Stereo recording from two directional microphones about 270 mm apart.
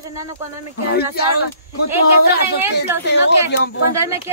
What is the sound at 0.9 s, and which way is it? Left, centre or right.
Speech, left.